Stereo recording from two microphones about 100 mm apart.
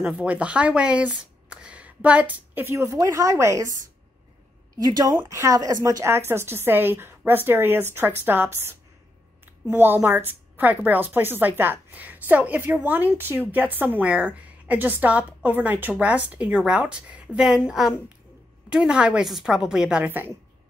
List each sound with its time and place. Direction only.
0.0 s speech: 15° right (ahead or behind); by 3.8 s 30° right (ahead or behind)
4.8 s a woman's voice: 40° right (ahead or behind); by 20.3 s 20° right (ahead or behind)